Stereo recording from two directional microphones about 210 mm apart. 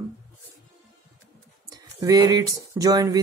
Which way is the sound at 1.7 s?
15° right (ahead or behind).